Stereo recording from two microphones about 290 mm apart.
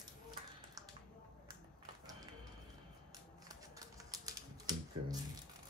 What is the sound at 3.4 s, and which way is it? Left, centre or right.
Typewriter, centre.